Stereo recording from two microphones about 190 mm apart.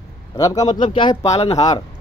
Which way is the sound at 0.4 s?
20° left (ahead or behind).